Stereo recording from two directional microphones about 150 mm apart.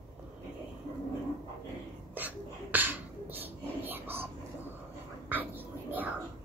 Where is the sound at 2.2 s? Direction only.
10° right (ahead or behind).